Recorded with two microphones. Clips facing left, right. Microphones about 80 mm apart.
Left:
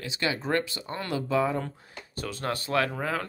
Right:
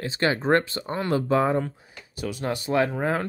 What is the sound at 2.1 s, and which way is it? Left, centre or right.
Speech, centre.